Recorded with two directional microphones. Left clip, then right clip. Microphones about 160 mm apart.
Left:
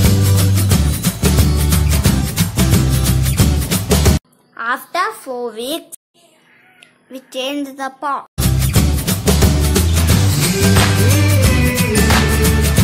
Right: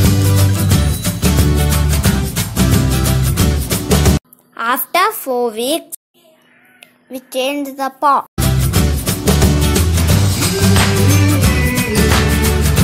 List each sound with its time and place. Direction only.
0.0 s music: centre (ahead or behind)
4.6 s a sound: 30° right (ahead or behind)
6.8 s cat: 15° right (ahead or behind)
7.6 s speech: 15° right (ahead or behind)
8.4 s music: centre (ahead or behind)